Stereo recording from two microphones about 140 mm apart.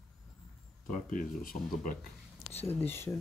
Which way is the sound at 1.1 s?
85° left.